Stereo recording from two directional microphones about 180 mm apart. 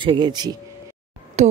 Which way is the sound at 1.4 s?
40° right (ahead or behind).